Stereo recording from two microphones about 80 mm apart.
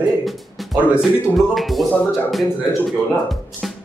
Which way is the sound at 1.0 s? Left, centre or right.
Centre.